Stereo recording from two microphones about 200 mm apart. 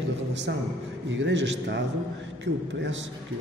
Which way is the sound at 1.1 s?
65° right (ahead or behind).